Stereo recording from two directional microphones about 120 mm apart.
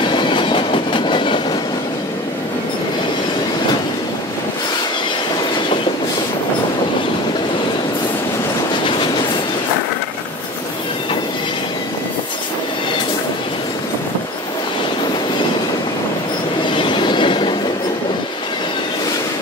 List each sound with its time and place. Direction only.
0.1 s train: 40° left (ahead or behind)
16.7 s train: 40° left (ahead or behind)